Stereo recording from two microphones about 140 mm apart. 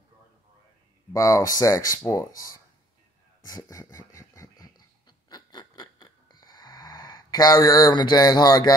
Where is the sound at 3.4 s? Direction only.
25° left (ahead or behind).